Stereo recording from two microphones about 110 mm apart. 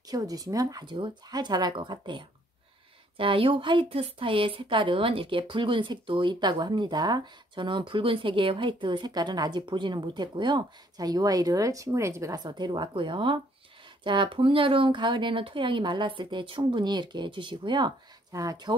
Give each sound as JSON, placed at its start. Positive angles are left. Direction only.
{"t": 0.1, "sound": "speech", "side_deg": -35}
{"t": 12.4, "sound": "speech", "side_deg": -40}
{"t": 18.3, "sound": "speech", "side_deg": -30}